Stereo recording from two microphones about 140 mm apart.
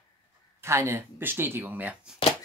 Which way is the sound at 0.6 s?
20° right (ahead or behind).